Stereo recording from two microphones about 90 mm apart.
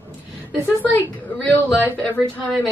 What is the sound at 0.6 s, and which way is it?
A woman's voice, 20° left (ahead or behind).